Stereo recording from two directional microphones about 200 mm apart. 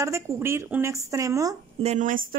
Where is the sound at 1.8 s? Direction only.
35° right (ahead or behind).